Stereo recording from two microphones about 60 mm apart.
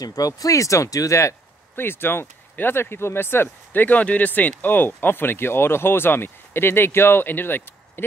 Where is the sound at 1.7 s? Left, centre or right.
Left.